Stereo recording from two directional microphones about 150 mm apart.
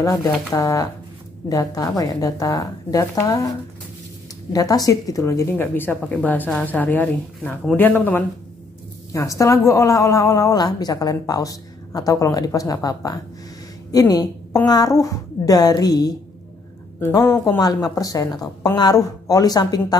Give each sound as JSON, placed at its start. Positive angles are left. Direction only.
{"t": 0.0, "sound": "a woman's voice", "side_deg": 25}